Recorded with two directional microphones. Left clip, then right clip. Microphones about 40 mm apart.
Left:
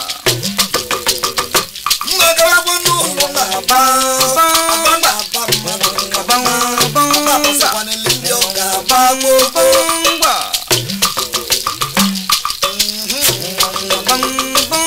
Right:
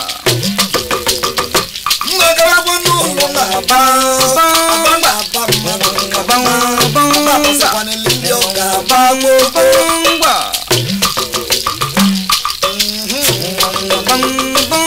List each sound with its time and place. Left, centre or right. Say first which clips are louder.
0.2 s music: right 1 dB; left